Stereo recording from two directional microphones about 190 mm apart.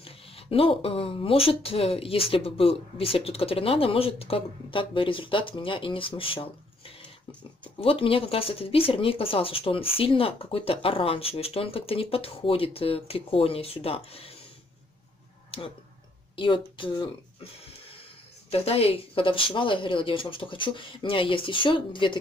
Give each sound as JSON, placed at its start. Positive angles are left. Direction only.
{"t": 0.0, "sound": "speech", "side_deg": 30}
{"t": 7.8, "sound": "speech", "side_deg": 30}
{"t": 16.3, "sound": "speech", "side_deg": 25}